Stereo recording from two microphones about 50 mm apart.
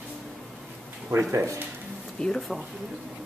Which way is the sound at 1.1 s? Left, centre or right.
Right.